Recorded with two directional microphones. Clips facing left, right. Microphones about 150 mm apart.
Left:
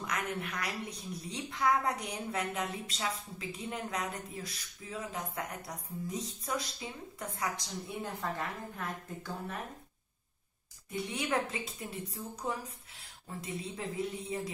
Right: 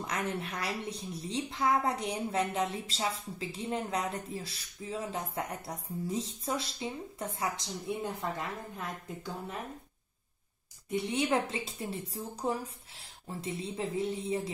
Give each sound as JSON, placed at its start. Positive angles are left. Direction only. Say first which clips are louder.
{"t": 0.0, "sound": "a woman's voice", "louder": "right 2 dB", "side_deg": -30}
{"t": 11.1, "sound": "a woman's voice", "louder": "right 3 dB", "side_deg": -30}